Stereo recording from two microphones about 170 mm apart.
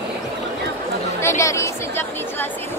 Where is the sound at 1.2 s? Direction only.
15° left (ahead or behind).